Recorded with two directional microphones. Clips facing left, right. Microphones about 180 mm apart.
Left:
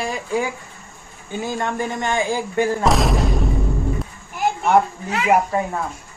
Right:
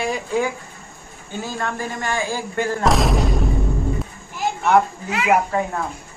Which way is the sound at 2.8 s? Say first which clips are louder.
Even; centre (ahead or behind).